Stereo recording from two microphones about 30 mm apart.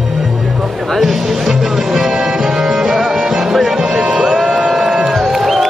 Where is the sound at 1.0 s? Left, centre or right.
Centre.